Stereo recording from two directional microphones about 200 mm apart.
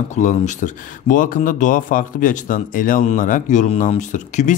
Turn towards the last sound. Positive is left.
turn(degrees=35)  # may be behind; listen again after turning